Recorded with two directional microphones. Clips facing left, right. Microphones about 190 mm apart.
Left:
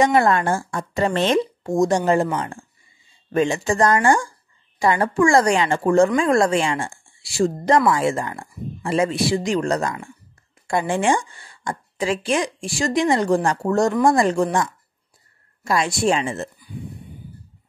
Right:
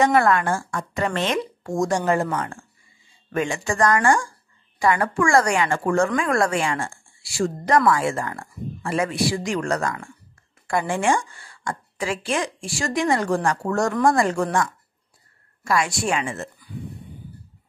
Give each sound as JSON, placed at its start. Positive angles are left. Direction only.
{"t": 0.0, "sound": "speech", "side_deg": 20}